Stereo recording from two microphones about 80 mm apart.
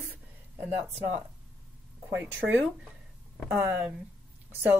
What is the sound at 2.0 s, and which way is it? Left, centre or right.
Speech, right.